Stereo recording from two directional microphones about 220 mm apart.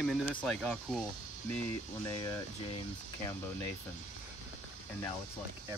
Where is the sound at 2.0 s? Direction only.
15° left (ahead or behind).